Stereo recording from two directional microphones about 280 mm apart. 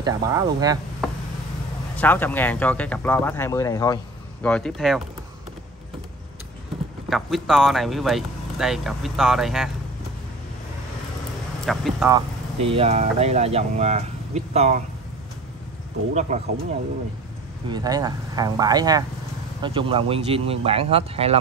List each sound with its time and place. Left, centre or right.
0.0 s speech: centre
1.0 s tick-tock: centre
2.0 s speech: centre
7.1 s speech: centre
11.6 s speech: centre
12.6 s speech: right
16.1 s speech: right
17.6 s speech: centre